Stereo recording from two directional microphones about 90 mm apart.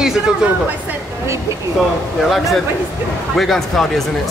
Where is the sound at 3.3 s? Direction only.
Centre (ahead or behind).